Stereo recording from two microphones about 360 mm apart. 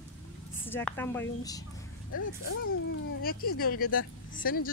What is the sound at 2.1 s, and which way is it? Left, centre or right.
Speech, left.